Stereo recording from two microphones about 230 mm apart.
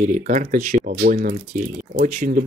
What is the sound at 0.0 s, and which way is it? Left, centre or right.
Speech, right.